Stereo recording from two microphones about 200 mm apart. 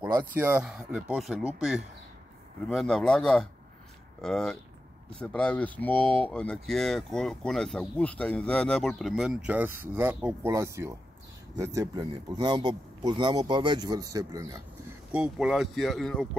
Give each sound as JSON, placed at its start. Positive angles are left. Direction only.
{"t": 0.3, "sound": "a man's voice", "side_deg": -10}